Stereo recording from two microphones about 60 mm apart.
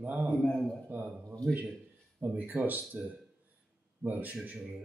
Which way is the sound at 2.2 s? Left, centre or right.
Right.